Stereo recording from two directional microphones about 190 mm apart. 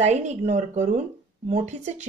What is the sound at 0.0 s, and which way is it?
Speech, 35° right (ahead or behind).